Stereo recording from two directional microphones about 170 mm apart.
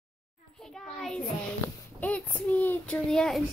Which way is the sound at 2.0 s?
10° left (ahead or behind).